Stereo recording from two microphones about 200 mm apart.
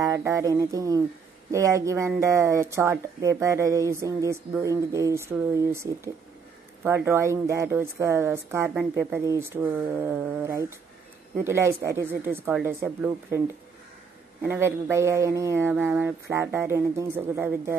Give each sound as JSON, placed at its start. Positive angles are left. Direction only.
{"t": 0.0, "sound": "speech", "side_deg": -15}
{"t": 14.4, "sound": "speech", "side_deg": -10}